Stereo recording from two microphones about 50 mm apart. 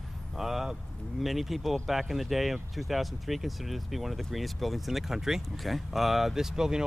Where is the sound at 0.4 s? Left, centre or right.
Centre.